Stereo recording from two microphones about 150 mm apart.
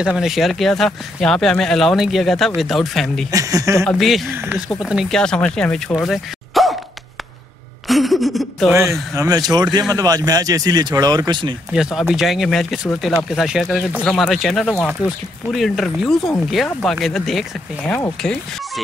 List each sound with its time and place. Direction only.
0.0 s speech: 5° right (ahead or behind)
3.3 s speech: 25° right (ahead or behind)
3.8 s speech: centre (ahead or behind)
6.0 s a sound: centre (ahead or behind)
7.9 s a sound: centre (ahead or behind)
9.1 s speech: 25° right (ahead or behind)
11.7 s speech: 5° right (ahead or behind)